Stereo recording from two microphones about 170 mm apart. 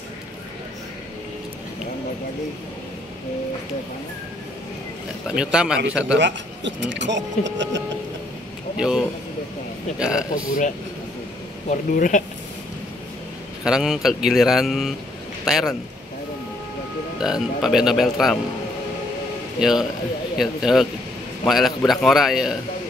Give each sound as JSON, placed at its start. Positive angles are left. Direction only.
{"t": 5.3, "sound": "speech", "side_deg": -5}
{"t": 6.1, "sound": "speech", "side_deg": -90}
{"t": 8.7, "sound": "speech", "side_deg": -5}
{"t": 11.7, "sound": "speech", "side_deg": 50}
{"t": 13.7, "sound": "speech", "side_deg": -5}
{"t": 17.2, "sound": "speech", "side_deg": 0}
{"t": 19.6, "sound": "speech", "side_deg": 0}